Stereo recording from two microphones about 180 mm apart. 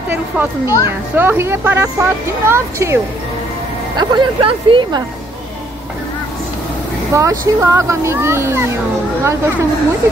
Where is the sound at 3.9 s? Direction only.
25° right (ahead or behind).